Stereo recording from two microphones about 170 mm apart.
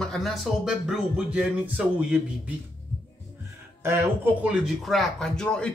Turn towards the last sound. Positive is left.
turn(degrees=5)  # may be behind; listen again after turning